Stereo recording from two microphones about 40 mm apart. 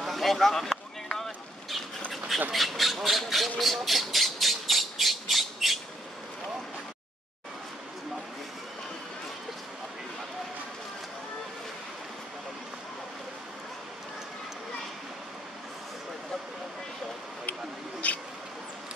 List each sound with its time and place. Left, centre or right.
0.0 s a sound: centre
1.1 s boat: centre
2.5 s squawk: centre
18.0 s mouse: left